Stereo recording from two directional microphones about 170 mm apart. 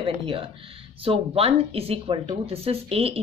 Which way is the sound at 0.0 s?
30° right (ahead or behind).